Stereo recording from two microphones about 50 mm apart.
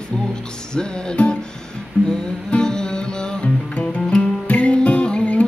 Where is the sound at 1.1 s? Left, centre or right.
Left.